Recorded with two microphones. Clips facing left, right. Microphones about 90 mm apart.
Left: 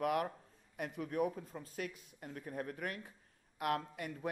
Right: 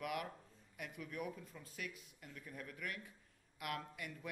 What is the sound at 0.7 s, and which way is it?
A man's voice, 40° left (ahead or behind).